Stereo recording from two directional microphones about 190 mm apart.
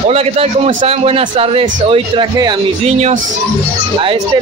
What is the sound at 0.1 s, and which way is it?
A man's voice, 35° right (ahead or behind).